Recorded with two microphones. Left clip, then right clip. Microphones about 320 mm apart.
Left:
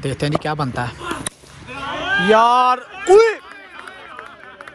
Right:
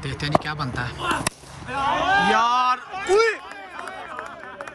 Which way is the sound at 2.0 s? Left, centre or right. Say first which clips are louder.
Left 1 dB; right.